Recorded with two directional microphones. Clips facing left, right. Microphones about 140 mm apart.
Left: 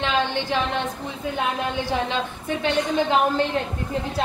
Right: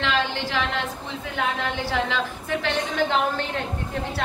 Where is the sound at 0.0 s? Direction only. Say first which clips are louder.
Left 2 dB; 20° left (ahead or behind).